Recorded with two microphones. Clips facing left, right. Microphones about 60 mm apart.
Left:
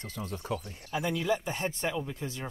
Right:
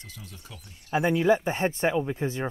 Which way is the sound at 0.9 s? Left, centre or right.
Right.